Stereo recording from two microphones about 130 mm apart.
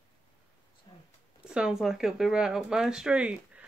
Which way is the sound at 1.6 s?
5° right (ahead or behind).